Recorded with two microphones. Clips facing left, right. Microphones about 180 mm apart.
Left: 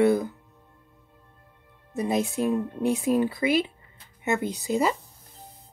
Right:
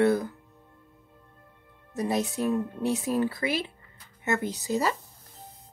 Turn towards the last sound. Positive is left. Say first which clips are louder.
# left 3 dB
turn(degrees=15)  # may be behind; listen again after turning